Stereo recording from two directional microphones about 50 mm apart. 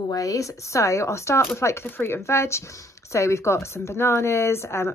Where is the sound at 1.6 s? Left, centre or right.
Left.